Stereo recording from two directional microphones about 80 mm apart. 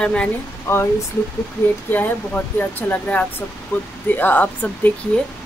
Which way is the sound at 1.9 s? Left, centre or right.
Left.